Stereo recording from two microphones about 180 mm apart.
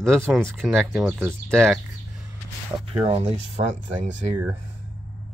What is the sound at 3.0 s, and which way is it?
Speech, 30° right (ahead or behind).